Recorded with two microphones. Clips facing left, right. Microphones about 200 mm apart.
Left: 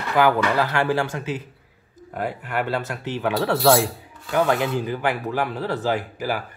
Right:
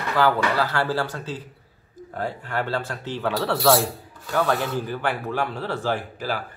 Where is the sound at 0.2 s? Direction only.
20° left (ahead or behind).